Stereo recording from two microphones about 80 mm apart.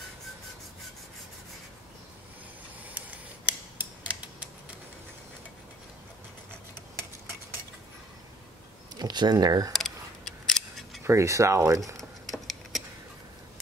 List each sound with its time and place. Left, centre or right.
3.4 s scissors: centre
8.9 s speech: right
9.7 s camera: centre
11.1 s speech: right
12.0 s a sound: centre